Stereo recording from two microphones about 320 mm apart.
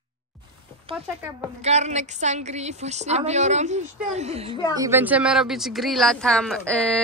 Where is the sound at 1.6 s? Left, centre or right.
Right.